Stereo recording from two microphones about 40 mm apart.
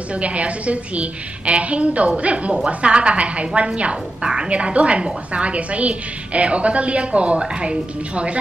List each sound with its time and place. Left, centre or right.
0.1 s a woman's voice: right
4.5 s a woman's voice: right